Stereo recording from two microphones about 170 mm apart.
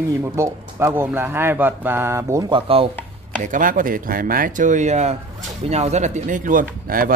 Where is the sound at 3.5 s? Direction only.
50° right (ahead or behind).